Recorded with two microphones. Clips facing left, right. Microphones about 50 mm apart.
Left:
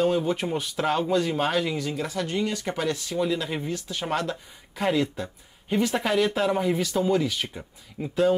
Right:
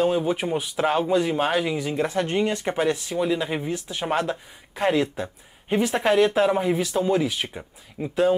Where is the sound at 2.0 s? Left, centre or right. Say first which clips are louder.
Right 5 dB; right.